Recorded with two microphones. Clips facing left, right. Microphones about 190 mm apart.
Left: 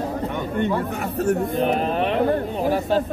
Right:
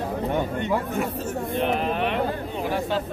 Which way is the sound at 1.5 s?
40° left (ahead or behind).